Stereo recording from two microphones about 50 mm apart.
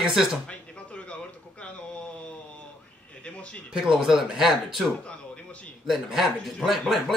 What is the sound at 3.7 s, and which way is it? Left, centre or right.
Speech, centre.